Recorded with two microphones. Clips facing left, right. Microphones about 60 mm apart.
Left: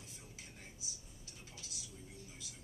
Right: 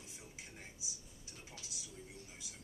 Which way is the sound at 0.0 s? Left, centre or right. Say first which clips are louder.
Right 1 dB; centre.